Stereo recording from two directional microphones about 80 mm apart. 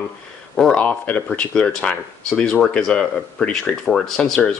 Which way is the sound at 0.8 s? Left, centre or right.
Centre.